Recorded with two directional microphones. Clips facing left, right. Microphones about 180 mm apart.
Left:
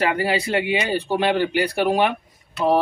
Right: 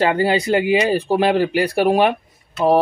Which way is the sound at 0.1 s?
30° right (ahead or behind).